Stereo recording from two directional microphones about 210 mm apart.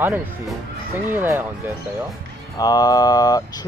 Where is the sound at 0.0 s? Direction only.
10° right (ahead or behind).